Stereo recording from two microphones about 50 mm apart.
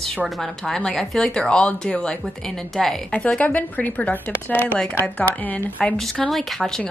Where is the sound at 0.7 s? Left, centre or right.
Centre.